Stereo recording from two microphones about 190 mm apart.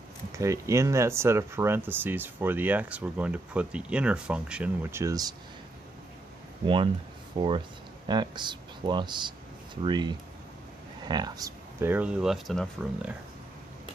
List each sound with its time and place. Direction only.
0.3 s speech: 15° right (ahead or behind)
5.0 s speech: 20° right (ahead or behind)
6.6 s speech: 25° right (ahead or behind); by 13.1 s centre (ahead or behind)